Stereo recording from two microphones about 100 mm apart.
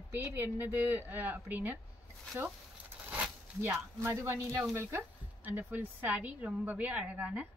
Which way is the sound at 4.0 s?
20° right (ahead or behind).